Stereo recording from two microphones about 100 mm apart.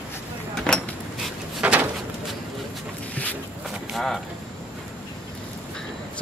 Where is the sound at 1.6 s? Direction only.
15° right (ahead or behind).